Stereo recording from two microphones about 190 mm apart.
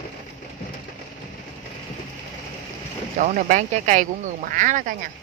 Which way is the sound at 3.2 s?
40° right (ahead or behind).